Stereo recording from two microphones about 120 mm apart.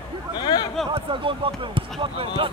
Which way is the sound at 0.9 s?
45° right (ahead or behind).